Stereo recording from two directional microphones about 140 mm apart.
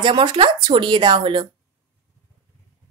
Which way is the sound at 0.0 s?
35° right (ahead or behind).